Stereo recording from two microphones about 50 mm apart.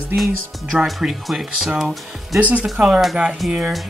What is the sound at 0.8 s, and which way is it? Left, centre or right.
Speech, centre.